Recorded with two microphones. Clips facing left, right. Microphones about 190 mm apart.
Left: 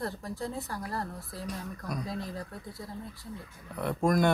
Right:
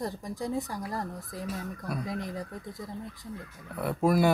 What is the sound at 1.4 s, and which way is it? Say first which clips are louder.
Speech: right 2 dB; 5° right (ahead or behind).